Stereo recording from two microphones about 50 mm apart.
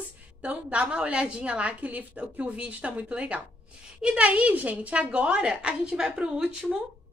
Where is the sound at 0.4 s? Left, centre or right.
Right.